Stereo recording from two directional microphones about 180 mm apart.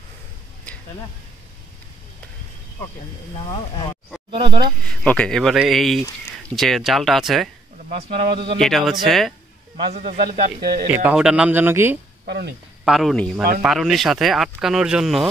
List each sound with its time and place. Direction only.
3.3 s speech: 25° left (ahead or behind)
4.3 s speech: 30° right (ahead or behind)
4.8 s speech: 5° left (ahead or behind)
7.9 s speech: 30° right (ahead or behind)
8.5 s speech: centre (ahead or behind)
10.2 s speech: 50° right (ahead or behind)
10.9 s speech: 10° right (ahead or behind)
12.3 s speech: 65° right (ahead or behind)
12.8 s speech: centre (ahead or behind)